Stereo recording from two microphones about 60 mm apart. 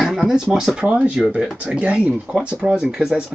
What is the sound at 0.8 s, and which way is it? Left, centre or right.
Speech, right.